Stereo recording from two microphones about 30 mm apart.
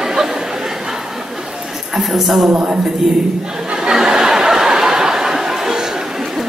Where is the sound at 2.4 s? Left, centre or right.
Right.